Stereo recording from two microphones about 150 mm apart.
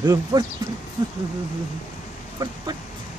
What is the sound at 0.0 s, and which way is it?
Speech, 25° right (ahead or behind).